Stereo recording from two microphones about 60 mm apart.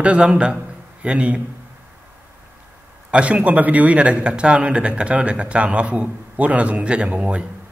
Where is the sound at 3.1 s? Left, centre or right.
Centre.